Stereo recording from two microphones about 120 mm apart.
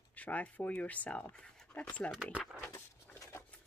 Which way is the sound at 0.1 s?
10° left (ahead or behind).